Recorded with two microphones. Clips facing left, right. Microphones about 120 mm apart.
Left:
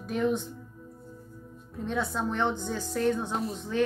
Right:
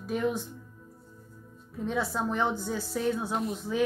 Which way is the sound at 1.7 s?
Centre (ahead or behind).